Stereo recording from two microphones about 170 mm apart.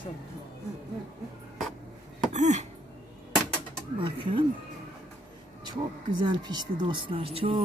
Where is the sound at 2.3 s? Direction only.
45° right (ahead or behind).